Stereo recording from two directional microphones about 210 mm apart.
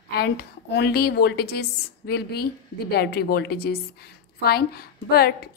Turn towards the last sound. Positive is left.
turn(degrees=50)  # may be behind; listen again after turning